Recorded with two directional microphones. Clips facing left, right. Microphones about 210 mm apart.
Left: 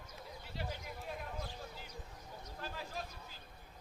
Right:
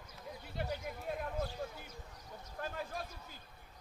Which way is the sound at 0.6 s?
55° right (ahead or behind).